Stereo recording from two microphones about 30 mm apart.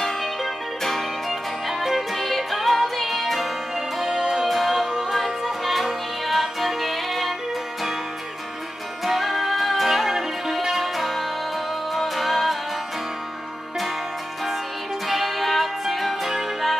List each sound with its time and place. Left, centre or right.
0.0 s music: centre
1.3 s music: centre
4.2 s music: right
4.5 s music: centre
9.0 s music: centre
15.0 s music: centre